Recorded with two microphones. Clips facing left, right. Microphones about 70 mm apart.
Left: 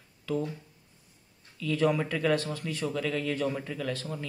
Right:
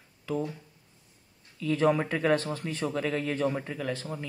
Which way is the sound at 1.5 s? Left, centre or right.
Right.